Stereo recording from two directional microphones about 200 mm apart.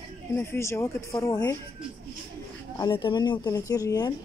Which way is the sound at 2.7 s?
20° left (ahead or behind).